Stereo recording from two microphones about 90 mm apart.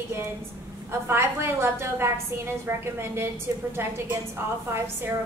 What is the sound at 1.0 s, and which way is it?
A woman's voice, 25° right (ahead or behind).